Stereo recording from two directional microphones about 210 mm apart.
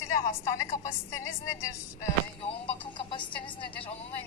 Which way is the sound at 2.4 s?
25° left (ahead or behind).